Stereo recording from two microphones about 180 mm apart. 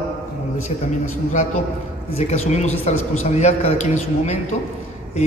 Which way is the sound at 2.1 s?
35° left (ahead or behind).